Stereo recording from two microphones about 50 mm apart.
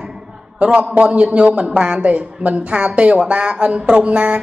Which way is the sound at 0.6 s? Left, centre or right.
Right.